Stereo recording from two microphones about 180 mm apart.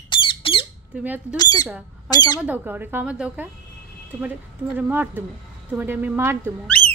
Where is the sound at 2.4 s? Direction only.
10° right (ahead or behind).